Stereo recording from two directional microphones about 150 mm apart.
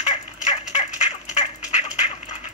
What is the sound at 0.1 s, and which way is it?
Fowl, 50° left (ahead or behind).